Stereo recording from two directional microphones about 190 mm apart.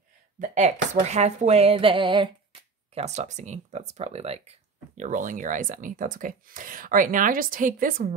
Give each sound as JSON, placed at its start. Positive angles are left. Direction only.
{"t": 0.4, "sound": "speech", "side_deg": -40}